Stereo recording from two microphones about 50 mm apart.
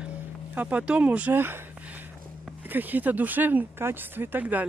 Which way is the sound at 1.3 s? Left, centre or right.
Right.